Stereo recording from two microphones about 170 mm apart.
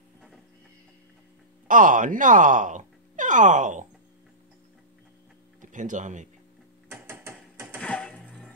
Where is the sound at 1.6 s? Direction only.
50° right (ahead or behind).